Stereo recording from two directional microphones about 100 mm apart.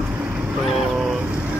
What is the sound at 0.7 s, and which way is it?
Speech, 10° right (ahead or behind).